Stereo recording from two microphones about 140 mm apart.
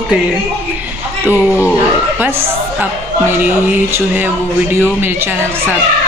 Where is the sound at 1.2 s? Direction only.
15° left (ahead or behind).